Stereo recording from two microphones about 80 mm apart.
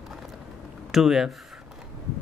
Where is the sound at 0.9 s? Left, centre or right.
Centre.